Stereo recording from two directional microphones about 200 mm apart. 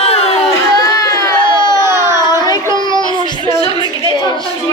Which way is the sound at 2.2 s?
20° left (ahead or behind).